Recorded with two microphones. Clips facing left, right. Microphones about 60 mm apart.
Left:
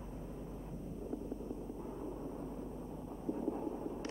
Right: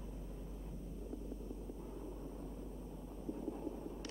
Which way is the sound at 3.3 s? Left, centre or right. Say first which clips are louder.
Left 5 dB; left.